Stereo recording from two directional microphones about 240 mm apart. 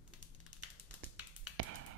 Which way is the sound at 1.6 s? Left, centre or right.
Right.